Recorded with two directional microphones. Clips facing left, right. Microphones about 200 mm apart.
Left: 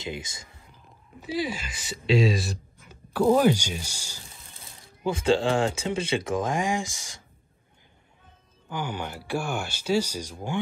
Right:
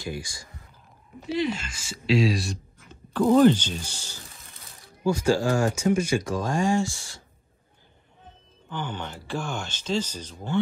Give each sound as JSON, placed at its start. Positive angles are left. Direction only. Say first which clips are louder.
{"t": 0.0, "sound": "speech", "louder": "right 1 dB", "side_deg": 20}
{"t": 1.2, "sound": "speech", "louder": "right 3 dB", "side_deg": 5}
{"t": 5.0, "sound": "speech", "louder": "right 1 dB", "side_deg": 25}
{"t": 8.6, "sound": "speech", "louder": "left 1 dB", "side_deg": 10}